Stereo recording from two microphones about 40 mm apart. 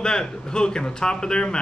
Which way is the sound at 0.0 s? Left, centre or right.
Centre.